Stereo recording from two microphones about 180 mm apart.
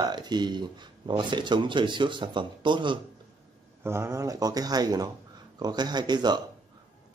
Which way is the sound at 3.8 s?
15° right (ahead or behind).